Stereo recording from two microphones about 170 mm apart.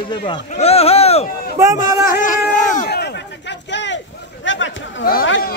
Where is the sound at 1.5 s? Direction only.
20° right (ahead or behind).